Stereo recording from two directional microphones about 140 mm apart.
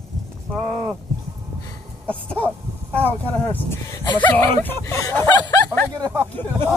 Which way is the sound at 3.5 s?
25° left (ahead or behind).